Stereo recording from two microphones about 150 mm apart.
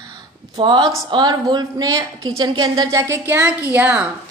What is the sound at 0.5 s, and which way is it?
A woman's voice, 30° right (ahead or behind).